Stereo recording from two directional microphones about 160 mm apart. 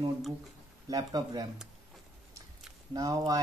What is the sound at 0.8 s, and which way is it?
Speech, 25° right (ahead or behind).